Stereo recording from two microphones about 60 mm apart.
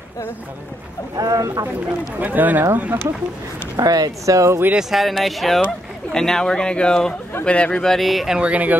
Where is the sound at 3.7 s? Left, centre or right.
Right.